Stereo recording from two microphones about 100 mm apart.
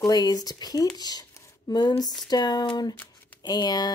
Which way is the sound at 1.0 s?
40° left (ahead or behind).